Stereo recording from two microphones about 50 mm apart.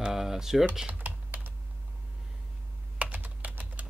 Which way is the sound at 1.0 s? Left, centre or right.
Right.